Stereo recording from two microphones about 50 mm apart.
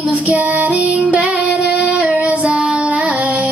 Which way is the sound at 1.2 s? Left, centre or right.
Right.